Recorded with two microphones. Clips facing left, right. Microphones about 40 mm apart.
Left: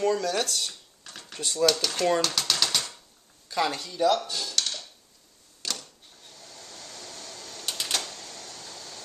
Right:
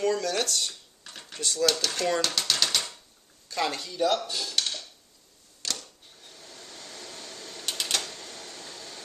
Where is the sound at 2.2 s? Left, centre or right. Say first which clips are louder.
Even; centre.